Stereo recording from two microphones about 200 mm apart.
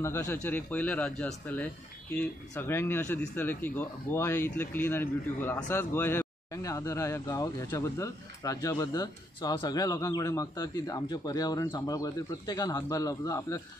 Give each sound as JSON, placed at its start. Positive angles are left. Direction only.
{"t": 0.0, "sound": "speech", "side_deg": 10}